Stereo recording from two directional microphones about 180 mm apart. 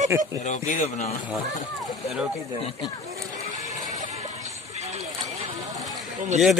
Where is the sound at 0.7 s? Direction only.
45° left (ahead or behind).